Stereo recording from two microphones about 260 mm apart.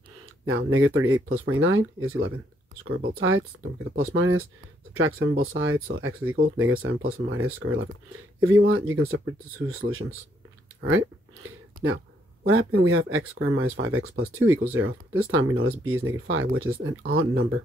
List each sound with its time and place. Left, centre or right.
0.5 s speech: right
11.7 s a sound: right
12.4 s speech: right